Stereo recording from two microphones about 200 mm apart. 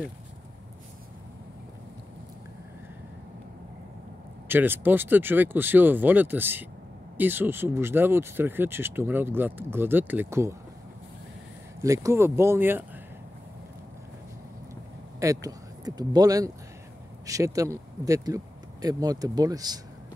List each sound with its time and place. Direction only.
4.5 s speech: 10° right (ahead or behind)
11.8 s speech: 15° right (ahead or behind)
15.1 s speech: 15° right (ahead or behind)